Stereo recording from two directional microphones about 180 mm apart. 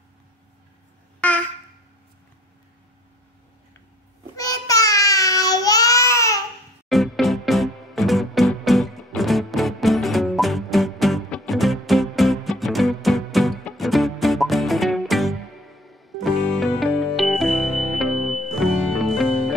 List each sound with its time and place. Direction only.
4.4 s child singing: 20° left (ahead or behind)
6.9 s music: centre (ahead or behind)